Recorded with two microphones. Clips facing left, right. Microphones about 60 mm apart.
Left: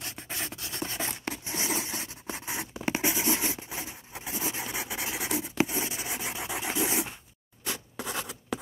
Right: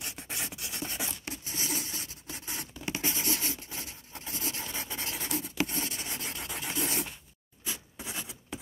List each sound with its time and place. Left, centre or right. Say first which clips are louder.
0.6 s a sound: left 3 dB; left
1.3 s scrape: left 5 dB; left
2.4 s scratch: left 5 dB; left
2.7 s writing: left 6 dB; left
3.0 s writing: left 4 dB; centre
7.6 s writing: left 5 dB; left